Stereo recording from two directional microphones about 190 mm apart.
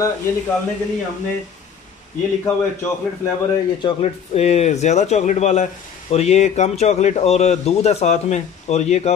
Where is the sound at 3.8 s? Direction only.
30° left (ahead or behind).